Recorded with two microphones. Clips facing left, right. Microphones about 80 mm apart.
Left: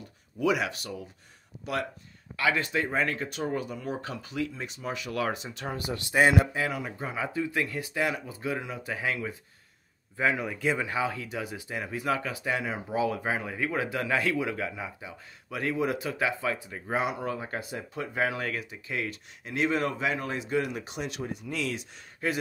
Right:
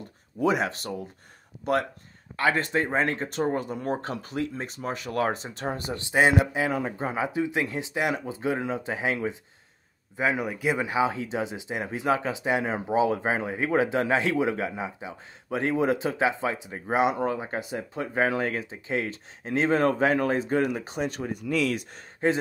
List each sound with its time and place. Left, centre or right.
0.4 s speech: right
22.2 s speech: right